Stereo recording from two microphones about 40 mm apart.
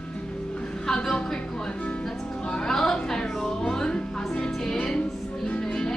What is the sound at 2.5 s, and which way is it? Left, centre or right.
Music, centre.